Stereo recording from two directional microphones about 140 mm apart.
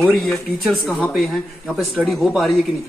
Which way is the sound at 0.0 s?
Centre (ahead or behind).